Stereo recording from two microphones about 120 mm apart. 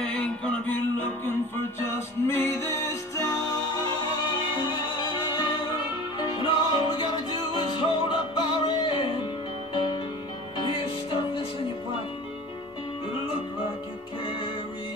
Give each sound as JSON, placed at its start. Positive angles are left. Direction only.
{"t": 0.0, "sound": "music", "side_deg": 5}
{"t": 4.6, "sound": "music", "side_deg": 40}
{"t": 10.6, "sound": "music", "side_deg": 45}